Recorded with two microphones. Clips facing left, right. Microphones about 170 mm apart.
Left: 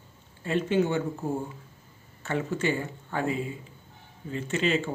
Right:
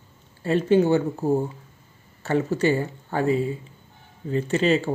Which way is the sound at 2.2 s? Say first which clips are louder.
Right 7 dB; 35° right (ahead or behind).